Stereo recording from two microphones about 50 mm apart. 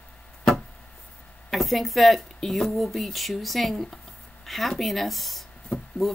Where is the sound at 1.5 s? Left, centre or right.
Centre.